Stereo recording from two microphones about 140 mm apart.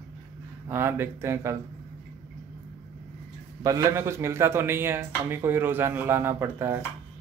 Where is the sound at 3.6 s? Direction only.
25° right (ahead or behind).